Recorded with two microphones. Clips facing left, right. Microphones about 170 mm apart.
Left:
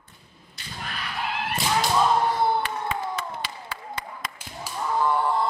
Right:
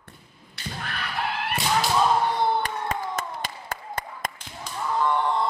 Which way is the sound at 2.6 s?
45° right (ahead or behind).